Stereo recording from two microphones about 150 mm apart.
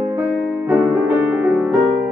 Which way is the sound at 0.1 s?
10° right (ahead or behind).